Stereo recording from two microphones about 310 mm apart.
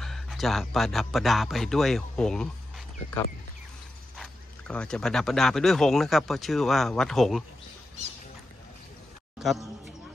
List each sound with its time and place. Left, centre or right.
0.0 s speech: centre
4.2 s speech: centre
9.4 s a man's voice: centre